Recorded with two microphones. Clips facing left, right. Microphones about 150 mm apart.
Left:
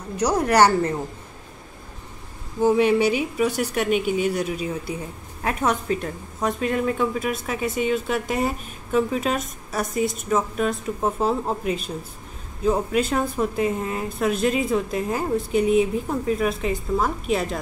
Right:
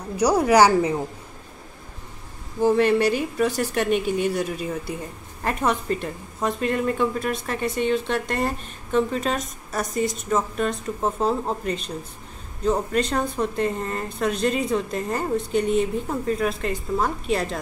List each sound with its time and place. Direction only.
0.2 s a woman's voice: 10° right (ahead or behind)
2.6 s a woman's voice: 5° left (ahead or behind)